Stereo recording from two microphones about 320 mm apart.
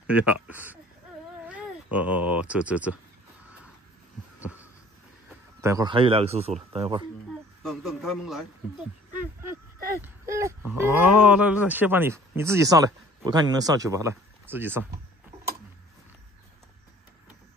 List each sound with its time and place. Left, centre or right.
0.0 s speech: centre
5.6 s speech: centre
7.6 s a man's voice: centre
10.0 s speech: centre
15.3 s a sound: centre